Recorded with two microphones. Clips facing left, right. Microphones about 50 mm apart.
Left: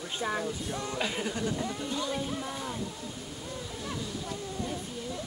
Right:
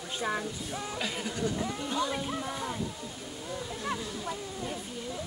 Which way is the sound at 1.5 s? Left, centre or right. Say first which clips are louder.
Even; centre.